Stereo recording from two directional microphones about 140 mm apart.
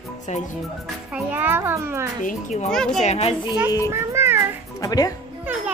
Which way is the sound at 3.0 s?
50° left (ahead or behind).